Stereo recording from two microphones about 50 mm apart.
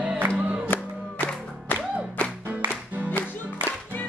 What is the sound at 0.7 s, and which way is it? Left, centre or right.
Music, left.